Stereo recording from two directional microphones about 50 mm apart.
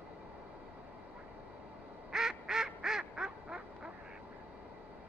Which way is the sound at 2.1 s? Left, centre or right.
Centre.